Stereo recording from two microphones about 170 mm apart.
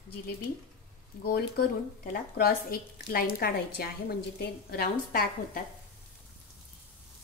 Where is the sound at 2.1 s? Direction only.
60° left (ahead or behind).